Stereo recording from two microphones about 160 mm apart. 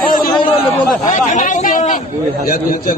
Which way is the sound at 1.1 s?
55° left (ahead or behind).